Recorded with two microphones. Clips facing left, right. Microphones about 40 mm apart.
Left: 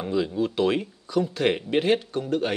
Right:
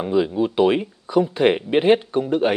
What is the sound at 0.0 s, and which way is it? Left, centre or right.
Speech, centre.